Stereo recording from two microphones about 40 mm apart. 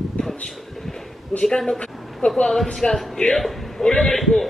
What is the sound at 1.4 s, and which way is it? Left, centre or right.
Speech, centre.